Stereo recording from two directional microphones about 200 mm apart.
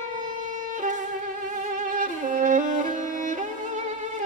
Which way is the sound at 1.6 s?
40° right (ahead or behind).